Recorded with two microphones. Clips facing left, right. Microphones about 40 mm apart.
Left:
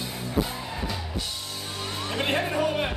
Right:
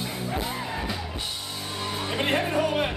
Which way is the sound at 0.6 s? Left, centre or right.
Centre.